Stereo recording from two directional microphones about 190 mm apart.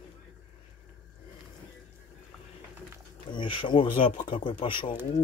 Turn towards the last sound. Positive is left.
turn(degrees=25)  # may be behind; listen again after turning